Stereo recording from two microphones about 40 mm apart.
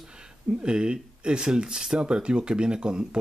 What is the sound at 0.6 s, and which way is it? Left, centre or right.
Speech, right.